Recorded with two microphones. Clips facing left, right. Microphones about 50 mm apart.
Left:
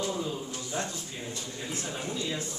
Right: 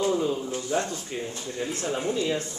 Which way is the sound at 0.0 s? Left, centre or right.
Right.